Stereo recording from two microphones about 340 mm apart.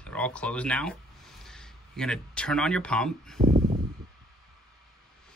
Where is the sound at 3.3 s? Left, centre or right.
Right.